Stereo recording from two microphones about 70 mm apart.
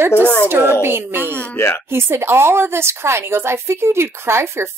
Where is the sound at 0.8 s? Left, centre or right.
Right.